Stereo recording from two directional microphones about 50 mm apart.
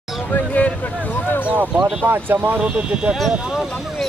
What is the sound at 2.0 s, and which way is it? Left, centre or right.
Speech, right.